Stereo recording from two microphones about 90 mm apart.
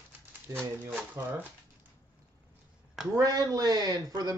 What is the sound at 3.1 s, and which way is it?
Speech, 45° right (ahead or behind).